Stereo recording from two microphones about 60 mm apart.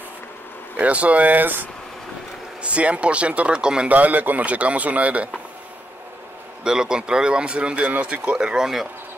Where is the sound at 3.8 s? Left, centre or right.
Right.